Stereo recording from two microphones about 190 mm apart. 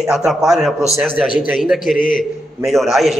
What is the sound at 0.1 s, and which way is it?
A man's voice, centre (ahead or behind).